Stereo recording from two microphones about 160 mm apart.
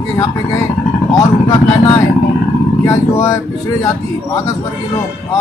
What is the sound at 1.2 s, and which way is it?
Speech, 25° left (ahead or behind).